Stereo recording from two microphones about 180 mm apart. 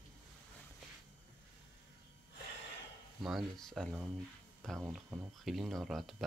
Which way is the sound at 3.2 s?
Centre (ahead or behind).